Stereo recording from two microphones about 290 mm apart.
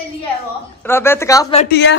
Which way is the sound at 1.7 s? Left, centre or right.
Left.